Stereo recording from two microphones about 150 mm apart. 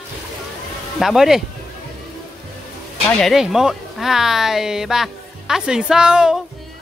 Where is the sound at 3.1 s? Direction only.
Centre (ahead or behind).